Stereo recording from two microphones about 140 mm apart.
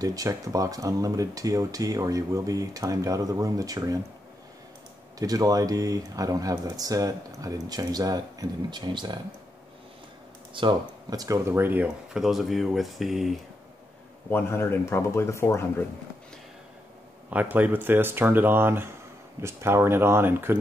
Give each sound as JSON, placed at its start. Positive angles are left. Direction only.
{"t": 0.0, "sound": "speech", "side_deg": -25}
{"t": 5.2, "sound": "speech", "side_deg": -25}
{"t": 10.5, "sound": "speech", "side_deg": -35}
{"t": 14.3, "sound": "speech", "side_deg": 15}
{"t": 17.3, "sound": "speech", "side_deg": -10}